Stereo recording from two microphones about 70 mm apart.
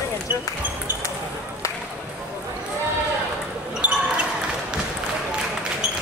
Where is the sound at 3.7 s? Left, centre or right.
Centre.